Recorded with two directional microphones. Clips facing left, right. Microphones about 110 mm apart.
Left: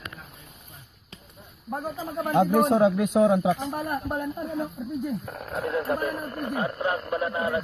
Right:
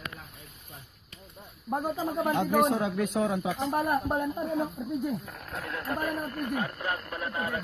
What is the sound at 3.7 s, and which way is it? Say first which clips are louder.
Speech: right 2 dB; 5° right (ahead or behind).